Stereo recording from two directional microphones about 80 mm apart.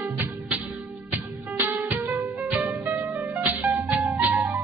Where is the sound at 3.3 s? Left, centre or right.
Right.